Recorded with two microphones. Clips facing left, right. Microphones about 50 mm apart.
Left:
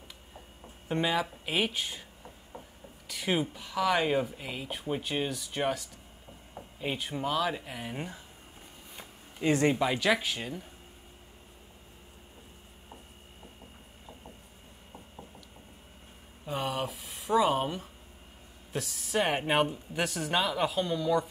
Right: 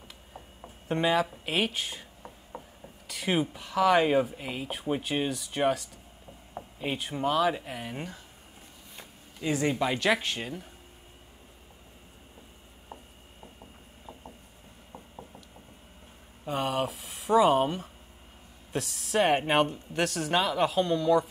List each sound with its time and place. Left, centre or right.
0.8 s speech: centre
2.5 s rub: right
3.1 s speech: centre
9.4 s speech: left
9.8 s speech: centre
16.4 s speech: centre